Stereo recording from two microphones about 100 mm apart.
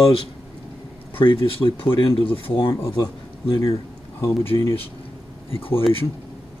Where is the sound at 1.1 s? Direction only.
60° left (ahead or behind).